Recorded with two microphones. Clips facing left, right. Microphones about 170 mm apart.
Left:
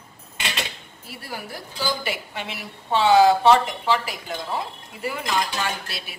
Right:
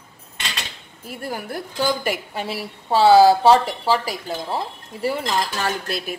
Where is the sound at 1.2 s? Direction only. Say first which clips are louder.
Right 6 dB; 50° right (ahead or behind).